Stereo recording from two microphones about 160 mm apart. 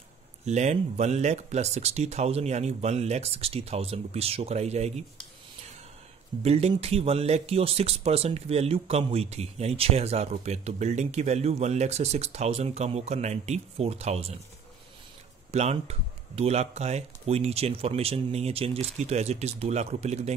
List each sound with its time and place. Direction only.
0.5 s speech: 45° right (ahead or behind)
6.4 s speech: 40° right (ahead or behind)
15.5 s speech: 45° right (ahead or behind)